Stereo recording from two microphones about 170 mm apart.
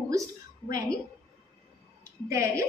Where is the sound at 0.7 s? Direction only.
20° right (ahead or behind).